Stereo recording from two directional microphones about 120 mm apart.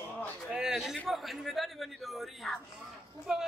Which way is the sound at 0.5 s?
5° right (ahead or behind).